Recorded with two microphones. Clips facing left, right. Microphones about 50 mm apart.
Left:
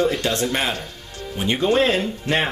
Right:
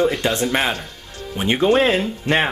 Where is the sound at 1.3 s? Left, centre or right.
Centre.